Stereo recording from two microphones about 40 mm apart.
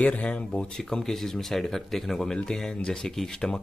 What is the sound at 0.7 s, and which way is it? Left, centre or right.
Speech, centre.